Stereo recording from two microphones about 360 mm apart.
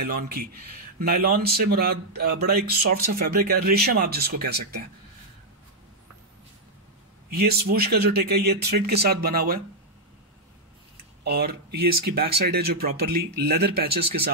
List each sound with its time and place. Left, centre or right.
0.1 s speech: right
7.2 s a man's voice: right
11.2 s speech: right